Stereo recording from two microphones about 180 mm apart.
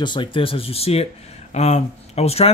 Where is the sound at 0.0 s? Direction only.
25° left (ahead or behind).